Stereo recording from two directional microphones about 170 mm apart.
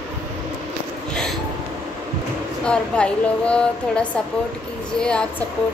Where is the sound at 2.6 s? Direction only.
5° left (ahead or behind).